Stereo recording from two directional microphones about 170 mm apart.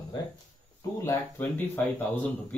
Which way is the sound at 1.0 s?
10° left (ahead or behind).